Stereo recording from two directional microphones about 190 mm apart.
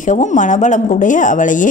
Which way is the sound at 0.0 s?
40° left (ahead or behind).